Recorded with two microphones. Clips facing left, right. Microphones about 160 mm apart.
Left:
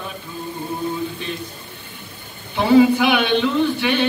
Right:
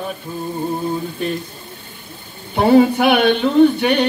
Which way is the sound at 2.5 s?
50° right (ahead or behind).